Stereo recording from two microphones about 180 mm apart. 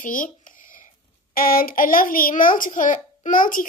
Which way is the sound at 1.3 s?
55° left (ahead or behind).